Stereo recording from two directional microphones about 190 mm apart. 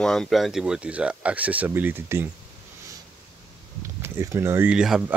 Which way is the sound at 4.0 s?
15° right (ahead or behind).